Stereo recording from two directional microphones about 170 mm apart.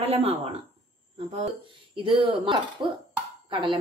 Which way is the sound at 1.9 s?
30° right (ahead or behind).